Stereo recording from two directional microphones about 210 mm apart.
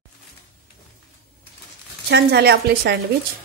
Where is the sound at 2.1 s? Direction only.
50° right (ahead or behind).